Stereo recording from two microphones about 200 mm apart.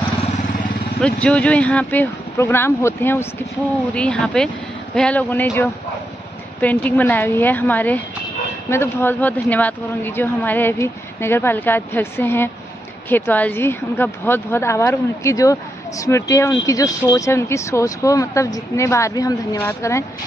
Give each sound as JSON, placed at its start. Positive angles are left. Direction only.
{"t": 1.0, "sound": "a woman's voice", "side_deg": 5}